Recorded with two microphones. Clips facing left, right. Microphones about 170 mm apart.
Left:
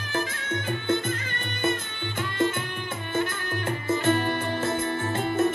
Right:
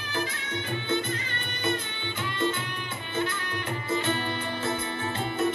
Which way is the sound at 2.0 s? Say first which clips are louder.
Left 4 dB; 50° left (ahead or behind).